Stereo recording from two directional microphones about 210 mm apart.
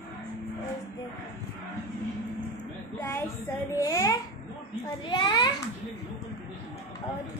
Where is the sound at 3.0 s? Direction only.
10° left (ahead or behind).